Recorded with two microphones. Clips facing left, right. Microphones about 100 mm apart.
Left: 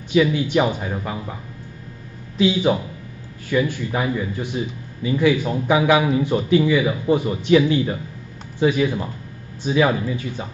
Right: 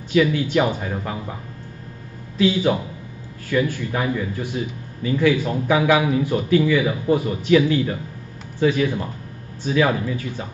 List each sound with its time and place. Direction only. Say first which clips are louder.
0.1 s a man's voice: even; 20° left (ahead or behind)
0.9 s speech: even; 5° left (ahead or behind)
2.3 s a man's voice: even; 20° left (ahead or behind)